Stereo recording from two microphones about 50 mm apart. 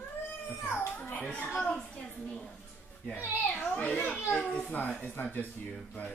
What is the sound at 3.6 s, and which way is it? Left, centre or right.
A child's voice, left.